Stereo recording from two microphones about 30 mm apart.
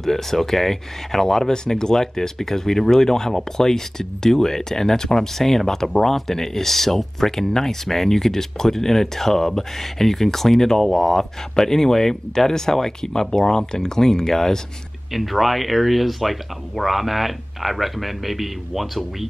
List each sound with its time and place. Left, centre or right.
0.0 s speech: centre
15.1 s speech: centre